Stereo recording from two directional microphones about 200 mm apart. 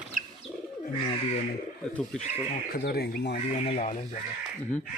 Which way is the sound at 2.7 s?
50° left (ahead or behind).